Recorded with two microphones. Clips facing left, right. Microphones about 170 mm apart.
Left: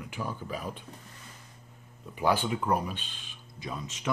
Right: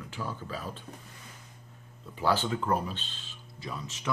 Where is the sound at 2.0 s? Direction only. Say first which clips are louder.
Left 1 dB; 15° left (ahead or behind).